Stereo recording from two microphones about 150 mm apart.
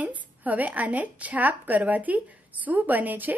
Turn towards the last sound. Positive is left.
turn(degrees=-10)  # may be behind; listen again after turning